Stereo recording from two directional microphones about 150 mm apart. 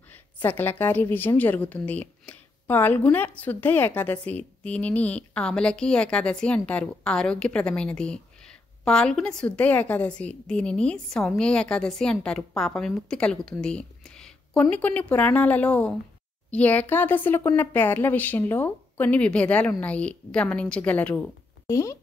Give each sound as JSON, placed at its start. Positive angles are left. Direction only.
{"t": 0.1, "sound": "a woman's voice", "side_deg": 15}
{"t": 21.6, "sound": "speech", "side_deg": 20}